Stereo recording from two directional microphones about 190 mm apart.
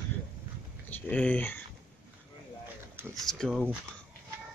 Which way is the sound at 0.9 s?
5° left (ahead or behind).